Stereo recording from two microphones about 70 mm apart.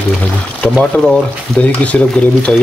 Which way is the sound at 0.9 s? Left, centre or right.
Centre.